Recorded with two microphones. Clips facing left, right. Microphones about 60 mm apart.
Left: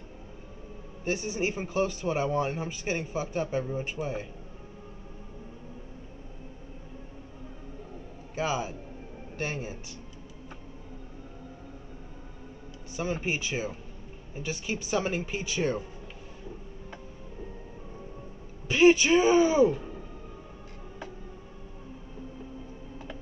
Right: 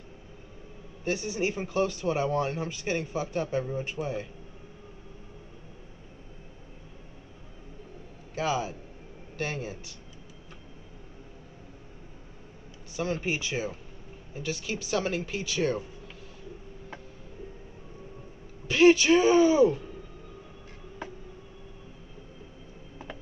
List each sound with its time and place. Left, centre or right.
1.0 s speech: centre
8.4 s speech: centre
12.9 s speech: centre
18.7 s speech: centre